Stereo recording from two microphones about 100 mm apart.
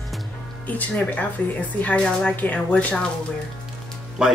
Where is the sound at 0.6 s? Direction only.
15° left (ahead or behind).